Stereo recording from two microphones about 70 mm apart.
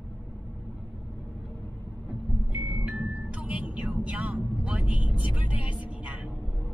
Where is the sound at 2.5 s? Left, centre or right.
Centre.